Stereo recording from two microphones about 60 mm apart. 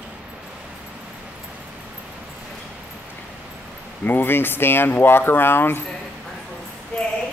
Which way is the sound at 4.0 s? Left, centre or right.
Left.